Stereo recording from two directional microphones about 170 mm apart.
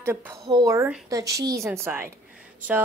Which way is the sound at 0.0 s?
15° right (ahead or behind).